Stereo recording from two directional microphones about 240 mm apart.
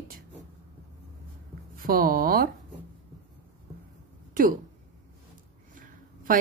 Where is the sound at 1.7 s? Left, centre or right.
Right.